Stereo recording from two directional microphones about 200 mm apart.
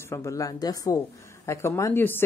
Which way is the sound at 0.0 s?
15° left (ahead or behind).